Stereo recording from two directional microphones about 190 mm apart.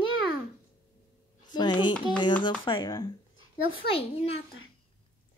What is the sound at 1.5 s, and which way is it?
A child's voice, 25° left (ahead or behind).